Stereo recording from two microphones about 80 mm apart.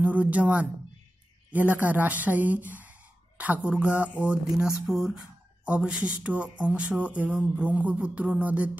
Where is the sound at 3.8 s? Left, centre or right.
Left.